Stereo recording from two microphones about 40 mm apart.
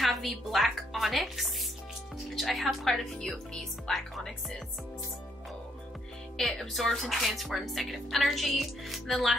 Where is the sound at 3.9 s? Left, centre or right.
Centre.